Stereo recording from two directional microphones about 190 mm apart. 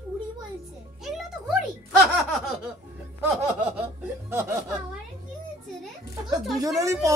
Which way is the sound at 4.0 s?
10° right (ahead or behind).